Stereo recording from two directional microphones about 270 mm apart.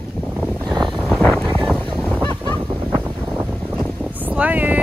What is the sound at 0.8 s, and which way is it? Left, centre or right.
Wind noise, centre.